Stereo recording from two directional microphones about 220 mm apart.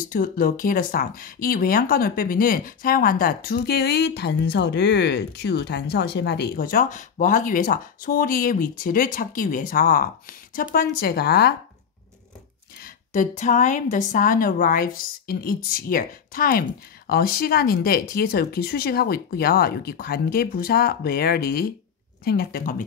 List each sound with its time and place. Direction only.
0.0 s speech: 40° left (ahead or behind)
12.7 s speech: 40° left (ahead or behind)